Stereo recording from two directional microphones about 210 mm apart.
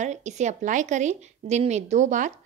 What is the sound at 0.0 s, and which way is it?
A woman's voice, 35° right (ahead or behind).